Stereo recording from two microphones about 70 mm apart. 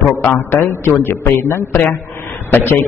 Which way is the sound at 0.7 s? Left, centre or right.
Left.